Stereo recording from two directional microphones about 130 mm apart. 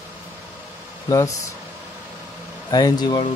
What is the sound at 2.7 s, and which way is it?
Speech, 30° left (ahead or behind).